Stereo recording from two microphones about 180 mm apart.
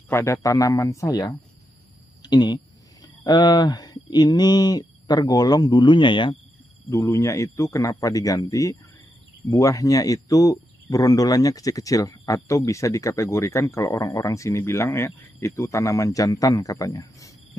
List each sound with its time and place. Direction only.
0.1 s speech: 15° left (ahead or behind)